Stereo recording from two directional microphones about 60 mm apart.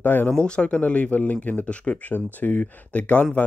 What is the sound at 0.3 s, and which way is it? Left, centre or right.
Speech, centre.